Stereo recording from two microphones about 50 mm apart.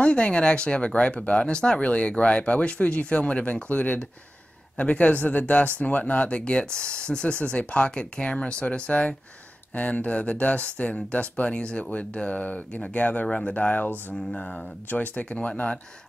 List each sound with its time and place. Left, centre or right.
0.0 s speech: left